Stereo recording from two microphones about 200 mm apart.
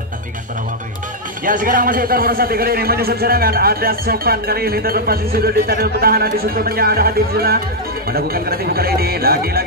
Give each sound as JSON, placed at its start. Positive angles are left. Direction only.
{"t": 1.4, "sound": "a man's voice", "side_deg": -45}